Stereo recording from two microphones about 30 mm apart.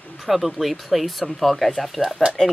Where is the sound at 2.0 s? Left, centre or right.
Left.